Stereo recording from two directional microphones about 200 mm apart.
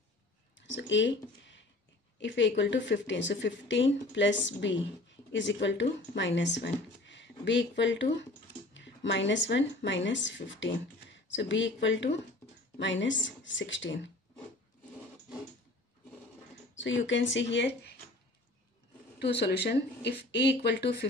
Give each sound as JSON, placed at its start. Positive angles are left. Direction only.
{"t": 0.6, "sound": "speech", "side_deg": 65}
{"t": 16.7, "sound": "speech", "side_deg": 65}
{"t": 19.1, "sound": "speech", "side_deg": 55}